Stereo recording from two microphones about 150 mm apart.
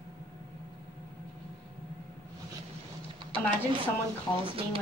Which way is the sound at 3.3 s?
35° right (ahead or behind).